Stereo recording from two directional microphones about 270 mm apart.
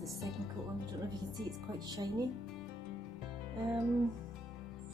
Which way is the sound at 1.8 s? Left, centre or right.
Centre.